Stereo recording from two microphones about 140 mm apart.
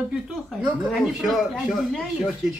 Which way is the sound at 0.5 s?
Centre (ahead or behind).